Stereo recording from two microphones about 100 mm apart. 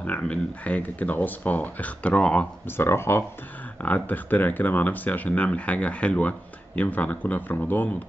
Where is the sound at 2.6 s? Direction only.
25° left (ahead or behind).